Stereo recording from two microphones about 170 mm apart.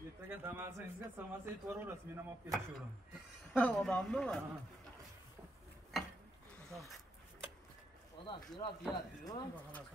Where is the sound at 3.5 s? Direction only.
5° left (ahead or behind).